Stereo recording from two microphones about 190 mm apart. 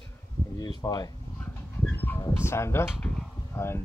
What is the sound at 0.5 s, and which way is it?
Speech, 20° left (ahead or behind).